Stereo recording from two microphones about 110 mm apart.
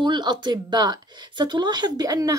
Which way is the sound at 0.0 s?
40° right (ahead or behind).